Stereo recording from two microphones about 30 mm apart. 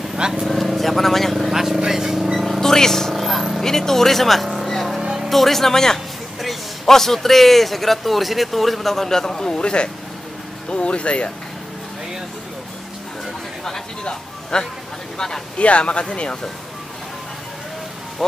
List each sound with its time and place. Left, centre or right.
0.5 s vehicle: centre
1.5 s vehicle: centre
2.6 s a sound: centre
3.1 s vehicle: centre
3.6 s speech: centre
4.6 s vehicle: centre
5.0 s music: centre
5.3 s a man's voice: centre
9.2 s speech: left
9.6 s speech: left
14.0 s speech: left
15.1 s speech: centre
15.6 s speech: left